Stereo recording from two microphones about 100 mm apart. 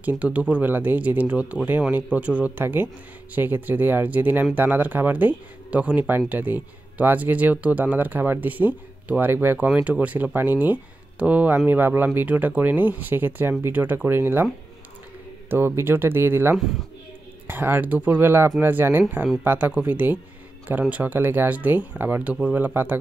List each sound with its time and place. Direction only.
0.2 s speech: 15° right (ahead or behind)
15.5 s speech: 25° right (ahead or behind)